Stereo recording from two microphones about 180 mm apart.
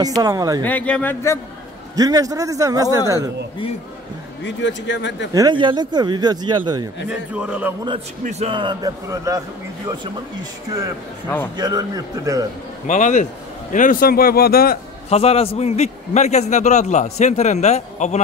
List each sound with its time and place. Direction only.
0.0 s speech: 20° right (ahead or behind)
0.7 s speech: 10° left (ahead or behind)
2.0 s speech: 20° right (ahead or behind)
4.5 s speech: 85° left
5.3 s speech: 25° right (ahead or behind)
7.1 s a man's voice: 5° right (ahead or behind)
8.2 s speech: 40° right (ahead or behind); by 9.4 s 20° right (ahead or behind)
11.2 s speech: 10° left (ahead or behind)
11.5 s speech: 20° right (ahead or behind)
12.8 s a man's voice: 45° left (ahead or behind)
15.0 s a man's voice: 35° left (ahead or behind)